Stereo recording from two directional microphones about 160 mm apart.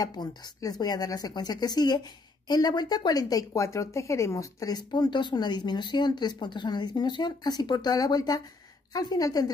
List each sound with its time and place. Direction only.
0.0 s speech: 25° left (ahead or behind)